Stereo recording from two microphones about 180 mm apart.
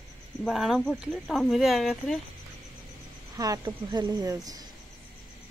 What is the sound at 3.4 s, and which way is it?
Speech, 20° right (ahead or behind).